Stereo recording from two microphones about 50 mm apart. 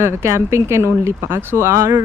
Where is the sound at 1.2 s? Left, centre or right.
Right.